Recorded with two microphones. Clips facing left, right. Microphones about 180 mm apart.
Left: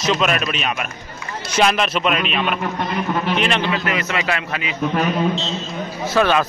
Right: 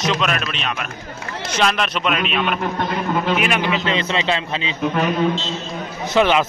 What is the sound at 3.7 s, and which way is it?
A man's voice, 25° right (ahead or behind).